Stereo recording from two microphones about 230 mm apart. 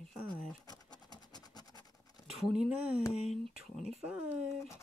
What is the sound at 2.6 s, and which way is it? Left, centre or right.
Speech, centre.